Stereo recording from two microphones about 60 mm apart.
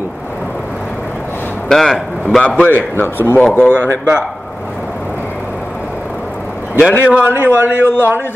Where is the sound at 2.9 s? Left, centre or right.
Left.